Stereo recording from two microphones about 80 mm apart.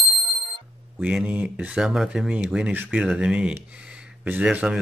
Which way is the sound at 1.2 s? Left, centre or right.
Right.